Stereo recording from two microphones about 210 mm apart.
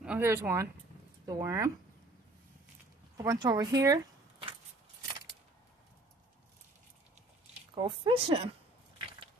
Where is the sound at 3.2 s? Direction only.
15° right (ahead or behind).